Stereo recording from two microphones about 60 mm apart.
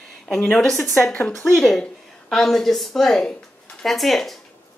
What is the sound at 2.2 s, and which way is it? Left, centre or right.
A woman's voice, centre.